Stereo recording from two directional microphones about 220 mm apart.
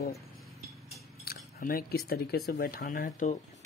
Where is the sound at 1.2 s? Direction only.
45° left (ahead or behind).